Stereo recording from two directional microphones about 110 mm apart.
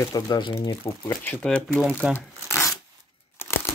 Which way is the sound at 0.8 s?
20° left (ahead or behind).